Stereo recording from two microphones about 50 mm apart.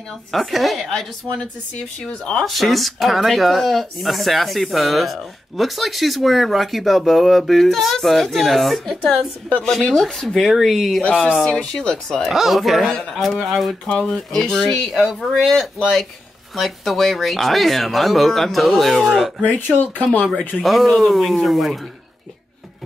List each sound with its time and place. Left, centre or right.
0.3 s speech: centre
2.0 s speech: left
2.4 s speech: centre
9.6 s speech: centre
11.1 s speech: left
11.8 s speech: centre
12.3 s speech: centre
13.8 s speech: centre
19.1 s speech: centre
19.4 s speech: left
20.6 s speech: centre